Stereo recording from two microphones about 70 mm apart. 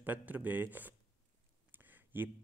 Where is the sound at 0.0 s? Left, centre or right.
Right.